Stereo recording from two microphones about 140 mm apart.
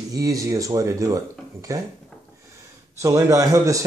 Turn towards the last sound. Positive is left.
turn(degrees=-25)  # may be behind; listen again after turning